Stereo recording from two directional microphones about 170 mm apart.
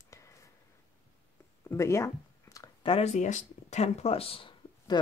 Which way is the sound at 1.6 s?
15° left (ahead or behind).